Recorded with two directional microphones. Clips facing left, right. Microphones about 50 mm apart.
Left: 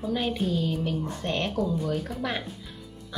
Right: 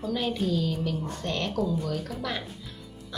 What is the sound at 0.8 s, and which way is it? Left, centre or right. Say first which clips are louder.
Speech: left 1 dB; left.